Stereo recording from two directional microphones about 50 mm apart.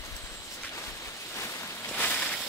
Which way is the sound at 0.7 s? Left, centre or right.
Left.